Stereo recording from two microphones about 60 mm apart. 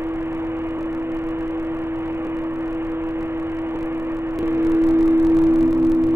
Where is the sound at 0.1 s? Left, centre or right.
Right.